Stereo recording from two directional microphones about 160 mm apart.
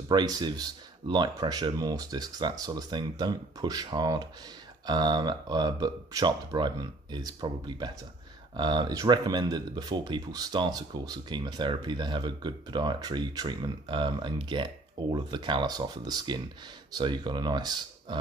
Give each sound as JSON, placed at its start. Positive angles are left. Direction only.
{"t": 0.1, "sound": "speech", "side_deg": -25}